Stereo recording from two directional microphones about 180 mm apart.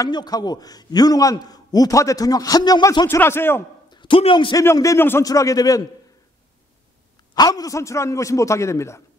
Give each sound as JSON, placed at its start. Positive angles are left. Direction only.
{"t": 0.0, "sound": "a man's voice", "side_deg": 20}
{"t": 3.9, "sound": "a man's voice", "side_deg": 25}
{"t": 4.6, "sound": "a man's voice", "side_deg": 15}
{"t": 7.3, "sound": "a man's voice", "side_deg": 20}